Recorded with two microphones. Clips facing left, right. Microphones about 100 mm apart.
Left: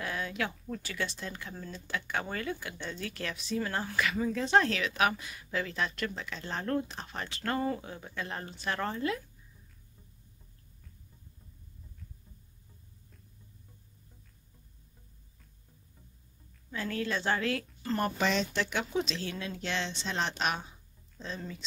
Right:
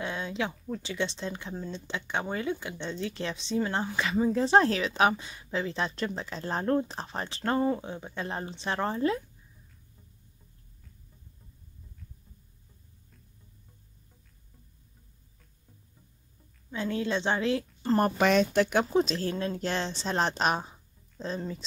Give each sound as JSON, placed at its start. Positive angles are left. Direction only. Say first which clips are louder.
{"t": 0.0, "sound": "a sound", "louder": "right 2 dB", "side_deg": -25}
{"t": 0.8, "sound": "speech", "louder": "right 6 dB", "side_deg": -25}
{"t": 16.7, "sound": "speech", "louder": "right 4 dB", "side_deg": -20}
{"t": 17.8, "sound": "speech", "louder": "right 6 dB", "side_deg": -40}
{"t": 18.1, "sound": "speech", "louder": "right 7 dB", "side_deg": -55}